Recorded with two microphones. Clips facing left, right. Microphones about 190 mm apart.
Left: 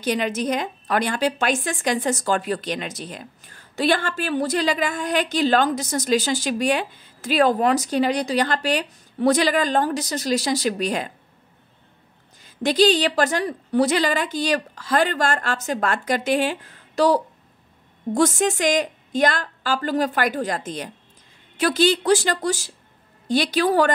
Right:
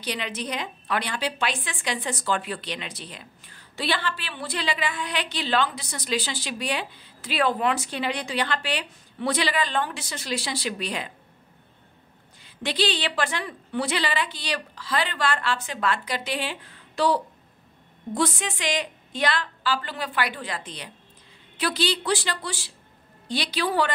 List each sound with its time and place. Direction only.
0.0 s a woman's voice: 45° left (ahead or behind)
12.4 s a woman's voice: 45° left (ahead or behind)